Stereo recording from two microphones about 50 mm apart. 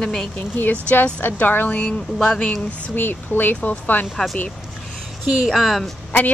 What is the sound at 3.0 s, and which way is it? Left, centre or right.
Speech, left.